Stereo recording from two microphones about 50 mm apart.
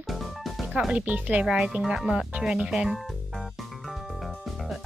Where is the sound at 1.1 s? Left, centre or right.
Right.